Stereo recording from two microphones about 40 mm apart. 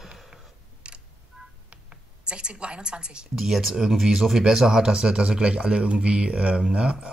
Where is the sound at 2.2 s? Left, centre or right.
Right.